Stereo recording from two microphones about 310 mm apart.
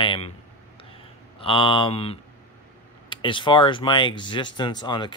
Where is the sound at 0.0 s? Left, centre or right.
Centre.